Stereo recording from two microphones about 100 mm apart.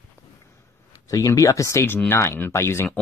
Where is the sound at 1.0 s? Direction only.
35° left (ahead or behind).